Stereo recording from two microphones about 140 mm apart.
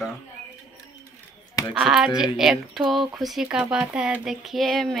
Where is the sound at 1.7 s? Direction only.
5° right (ahead or behind).